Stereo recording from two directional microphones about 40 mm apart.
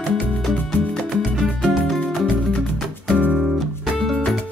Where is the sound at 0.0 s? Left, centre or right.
Centre.